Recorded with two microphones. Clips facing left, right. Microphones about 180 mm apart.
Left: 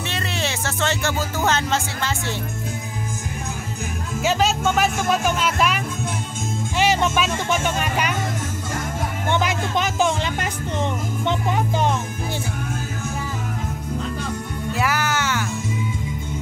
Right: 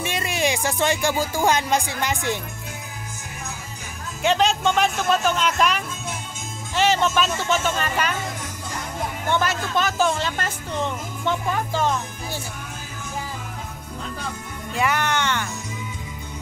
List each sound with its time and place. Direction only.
0.0 s music: 10° right (ahead or behind)
4.2 s speech: 5° left (ahead or behind)
6.8 s speech: 10° left (ahead or behind)
9.3 s speech: 15° left (ahead or behind)
14.7 s music: 5° left (ahead or behind)